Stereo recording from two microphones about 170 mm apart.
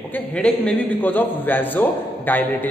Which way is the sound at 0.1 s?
5° left (ahead or behind).